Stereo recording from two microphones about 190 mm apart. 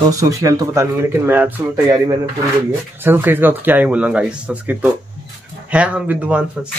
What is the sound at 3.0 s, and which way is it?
Speech, 10° right (ahead or behind).